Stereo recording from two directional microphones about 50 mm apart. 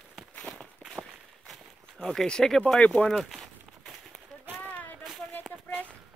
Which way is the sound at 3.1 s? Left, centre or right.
Centre.